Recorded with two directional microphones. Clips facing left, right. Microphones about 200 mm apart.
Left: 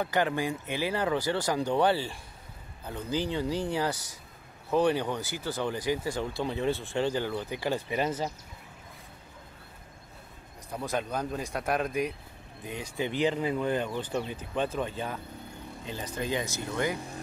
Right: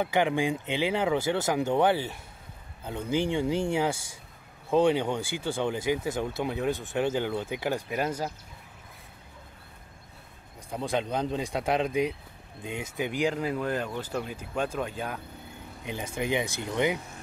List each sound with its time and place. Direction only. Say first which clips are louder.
0.0 s speech: right 3 dB; 15° right (ahead or behind)
3.3 s speech: right 3 dB; 20° right (ahead or behind)
7.9 s speech: even; 5° right (ahead or behind)
10.8 s speech: right 3 dB; 25° right (ahead or behind); by 15.2 s centre (ahead or behind)
15.8 s speech: right 3 dB; 15° right (ahead or behind)